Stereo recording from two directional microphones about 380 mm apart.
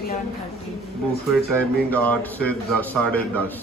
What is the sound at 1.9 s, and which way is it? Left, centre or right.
A man's voice, centre.